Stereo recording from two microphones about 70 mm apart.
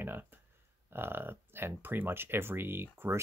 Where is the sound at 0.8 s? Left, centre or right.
Right.